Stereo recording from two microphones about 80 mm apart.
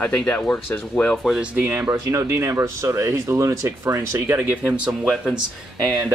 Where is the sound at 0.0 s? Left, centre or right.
Centre.